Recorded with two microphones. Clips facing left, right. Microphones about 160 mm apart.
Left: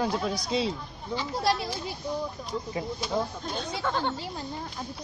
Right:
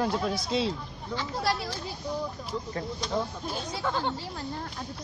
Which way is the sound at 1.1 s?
20° left (ahead or behind).